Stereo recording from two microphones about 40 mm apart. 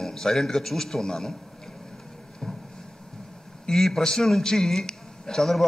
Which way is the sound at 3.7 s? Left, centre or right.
Centre.